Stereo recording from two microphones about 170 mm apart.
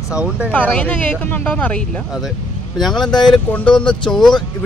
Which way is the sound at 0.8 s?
10° left (ahead or behind).